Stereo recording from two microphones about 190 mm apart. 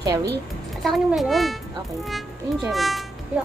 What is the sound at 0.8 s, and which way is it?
Speech, centre (ahead or behind).